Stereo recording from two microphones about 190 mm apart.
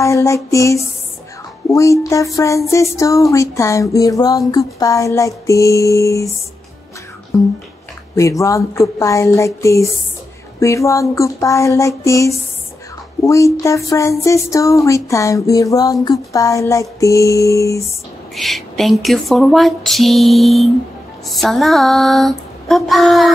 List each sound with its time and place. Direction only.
0.0 s speech: 15° left (ahead or behind)
8.2 s speech: 15° left (ahead or behind)
18.3 s speech: centre (ahead or behind)